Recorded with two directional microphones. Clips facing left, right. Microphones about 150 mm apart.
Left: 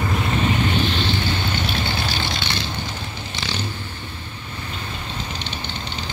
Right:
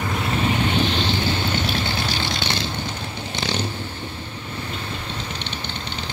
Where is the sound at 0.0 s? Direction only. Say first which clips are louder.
Left 1 dB; centre (ahead or behind); by 1.3 s 20° right (ahead or behind).